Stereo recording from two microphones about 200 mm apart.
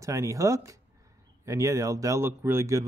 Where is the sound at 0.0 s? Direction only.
15° right (ahead or behind).